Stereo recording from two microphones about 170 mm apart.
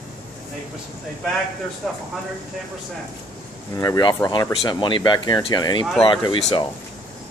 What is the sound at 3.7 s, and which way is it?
Speech, 20° left (ahead or behind).